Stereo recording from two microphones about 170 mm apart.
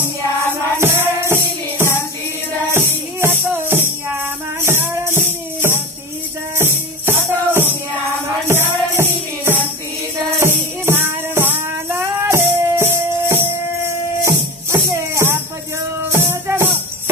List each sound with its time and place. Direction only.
0.7 s music: 15° right (ahead or behind)
14.2 s music: 15° right (ahead or behind)